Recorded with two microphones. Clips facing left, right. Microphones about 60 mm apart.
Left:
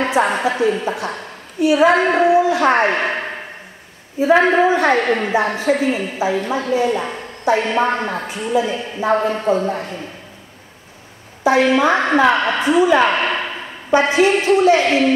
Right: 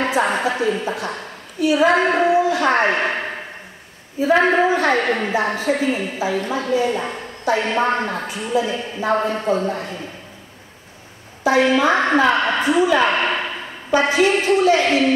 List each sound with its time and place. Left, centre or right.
0.0 s a woman's voice: left
2.4 s a woman's voice: left
11.7 s a woman's voice: left
13.4 s a sound: centre
13.9 s a woman's voice: left